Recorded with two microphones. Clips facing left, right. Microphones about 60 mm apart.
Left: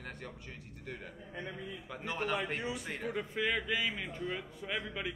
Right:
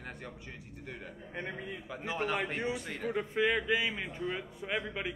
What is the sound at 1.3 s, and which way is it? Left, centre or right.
Speech, right.